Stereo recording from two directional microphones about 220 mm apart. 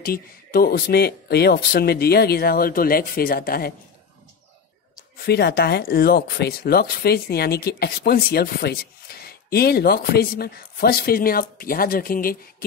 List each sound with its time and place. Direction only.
0.0 s speech: 40° left (ahead or behind)
5.2 s speech: 45° left (ahead or behind)